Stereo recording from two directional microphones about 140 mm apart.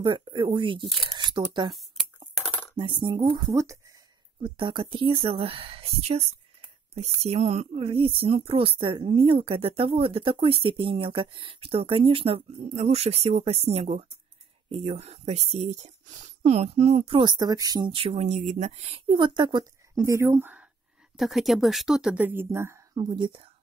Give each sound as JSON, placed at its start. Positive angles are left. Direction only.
{"t": 0.0, "sound": "speech", "side_deg": -35}
{"t": 2.4, "sound": "coin", "side_deg": 15}
{"t": 2.7, "sound": "speech", "side_deg": -35}
{"t": 3.3, "sound": "speech", "side_deg": -20}
{"t": 4.6, "sound": "speech", "side_deg": -35}
{"t": 12.4, "sound": "speech", "side_deg": -55}
{"t": 17.2, "sound": "speech", "side_deg": -30}
{"t": 21.2, "sound": "speech", "side_deg": 0}
{"t": 22.9, "sound": "speech", "side_deg": -30}